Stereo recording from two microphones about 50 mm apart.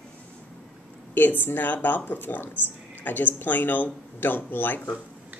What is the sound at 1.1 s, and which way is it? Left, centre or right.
Speech, left.